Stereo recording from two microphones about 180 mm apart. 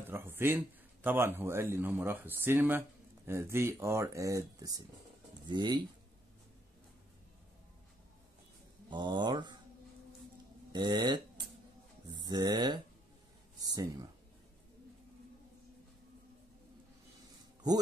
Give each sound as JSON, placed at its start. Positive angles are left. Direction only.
{"t": 0.1, "sound": "speech", "side_deg": -15}
{"t": 8.9, "sound": "speech", "side_deg": -25}
{"t": 10.7, "sound": "speech", "side_deg": -25}